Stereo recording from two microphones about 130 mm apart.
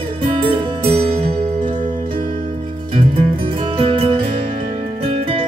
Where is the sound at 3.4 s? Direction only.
40° right (ahead or behind).